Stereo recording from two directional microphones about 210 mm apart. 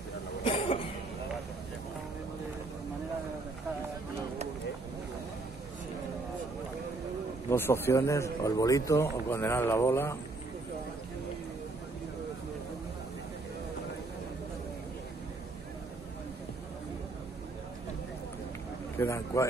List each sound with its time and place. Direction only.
0.4 s cough: 25° left (ahead or behind)
7.4 s a man's voice: 10° left (ahead or behind)
18.9 s a sound: 15° left (ahead or behind)